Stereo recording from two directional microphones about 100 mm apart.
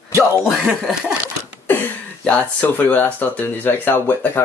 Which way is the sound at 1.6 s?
20° left (ahead or behind).